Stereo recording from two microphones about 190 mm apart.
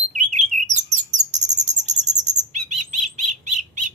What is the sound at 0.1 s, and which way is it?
Chirp, 40° right (ahead or behind).